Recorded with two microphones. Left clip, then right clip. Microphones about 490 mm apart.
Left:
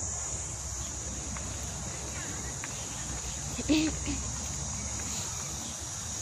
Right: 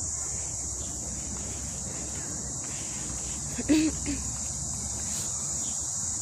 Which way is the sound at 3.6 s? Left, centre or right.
Left.